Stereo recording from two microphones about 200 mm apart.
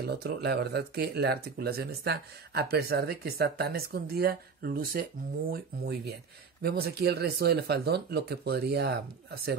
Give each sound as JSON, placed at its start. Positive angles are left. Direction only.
{"t": 0.0, "sound": "speech", "side_deg": -50}